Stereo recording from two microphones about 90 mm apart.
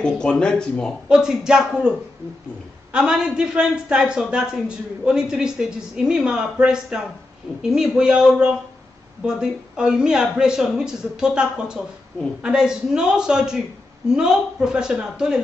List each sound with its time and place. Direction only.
0.0 s speech: 10° left (ahead or behind)
1.0 s a man's voice: 10° right (ahead or behind)